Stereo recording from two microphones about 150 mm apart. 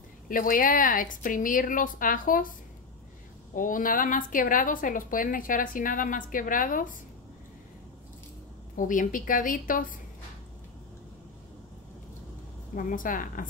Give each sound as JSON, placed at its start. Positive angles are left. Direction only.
{"t": 0.3, "sound": "a woman's voice", "side_deg": 65}
{"t": 3.5, "sound": "a woman's voice", "side_deg": 65}
{"t": 8.7, "sound": "a woman's voice", "side_deg": 65}
{"t": 12.7, "sound": "a woman's voice", "side_deg": 65}